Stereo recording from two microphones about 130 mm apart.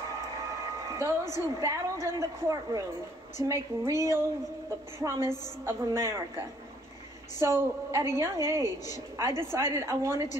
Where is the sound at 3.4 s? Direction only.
25° right (ahead or behind).